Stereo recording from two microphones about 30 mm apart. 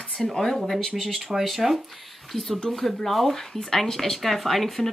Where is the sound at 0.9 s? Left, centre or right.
Centre.